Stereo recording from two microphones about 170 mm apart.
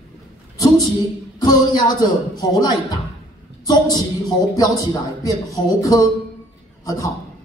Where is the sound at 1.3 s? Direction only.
20° left (ahead or behind).